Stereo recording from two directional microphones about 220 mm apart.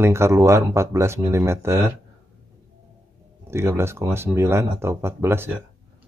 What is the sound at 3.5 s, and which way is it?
Speech, 10° right (ahead or behind).